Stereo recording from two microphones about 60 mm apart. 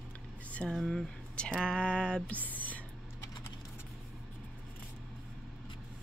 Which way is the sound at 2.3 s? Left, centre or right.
Left.